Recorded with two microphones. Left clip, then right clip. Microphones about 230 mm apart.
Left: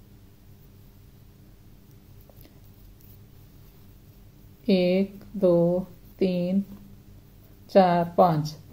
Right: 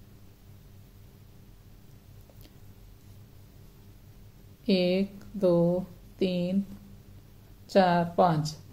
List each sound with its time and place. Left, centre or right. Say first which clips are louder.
4.6 s a woman's voice: left 3 dB; centre
7.6 s speech: left 4 dB; centre